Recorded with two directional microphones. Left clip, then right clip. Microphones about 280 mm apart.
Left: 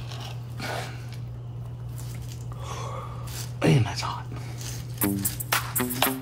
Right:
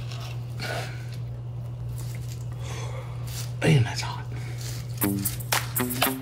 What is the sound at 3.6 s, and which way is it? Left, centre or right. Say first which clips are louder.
Whispering: left 1 dB; left.